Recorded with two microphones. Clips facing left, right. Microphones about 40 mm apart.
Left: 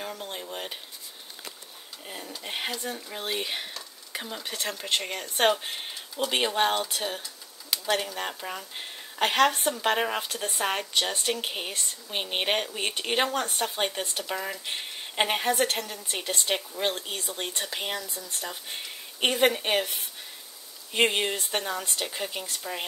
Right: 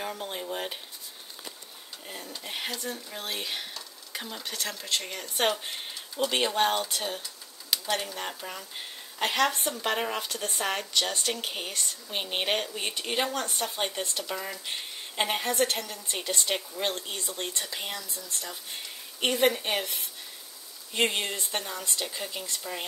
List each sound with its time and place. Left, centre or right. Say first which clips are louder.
0.0 s speech: right 1 dB; centre
2.0 s speech: left 2 dB; centre
2.4 s speech: left 2 dB; centre
4.5 s speech: left 3 dB; left
5.6 s speech: left 2 dB; centre; by 13.7 s left
13.7 s speech: left 2 dB; centre